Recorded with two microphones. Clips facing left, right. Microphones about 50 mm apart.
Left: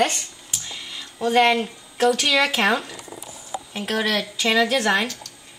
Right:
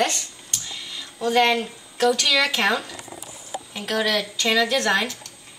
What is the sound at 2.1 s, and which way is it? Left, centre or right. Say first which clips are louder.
A woman's voice: left 1 dB; centre.